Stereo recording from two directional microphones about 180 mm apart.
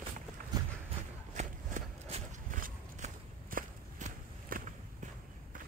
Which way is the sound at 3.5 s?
50° right (ahead or behind).